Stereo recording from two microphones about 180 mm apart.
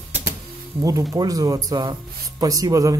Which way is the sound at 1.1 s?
20° right (ahead or behind).